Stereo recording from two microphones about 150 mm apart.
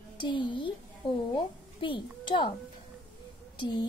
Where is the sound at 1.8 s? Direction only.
35° left (ahead or behind).